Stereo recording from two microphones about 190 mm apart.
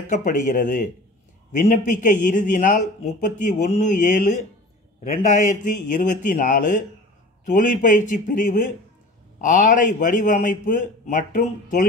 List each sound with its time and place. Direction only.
0.0 s a man's voice: 40° left (ahead or behind)